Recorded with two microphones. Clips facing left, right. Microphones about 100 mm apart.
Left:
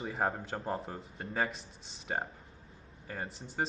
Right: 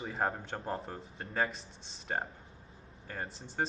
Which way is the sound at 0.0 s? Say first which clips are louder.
Left 1 dB; centre (ahead or behind).